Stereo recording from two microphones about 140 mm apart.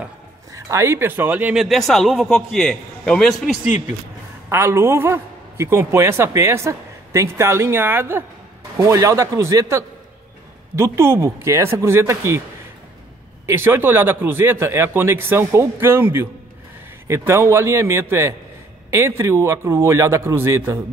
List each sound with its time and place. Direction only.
0.5 s speech: 20° right (ahead or behind); by 3.5 s centre (ahead or behind)
4.5 s a man's voice: 20° right (ahead or behind)
13.5 s a man's voice: 15° right (ahead or behind)